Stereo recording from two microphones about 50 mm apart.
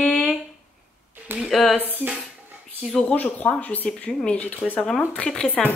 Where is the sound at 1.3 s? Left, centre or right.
Right.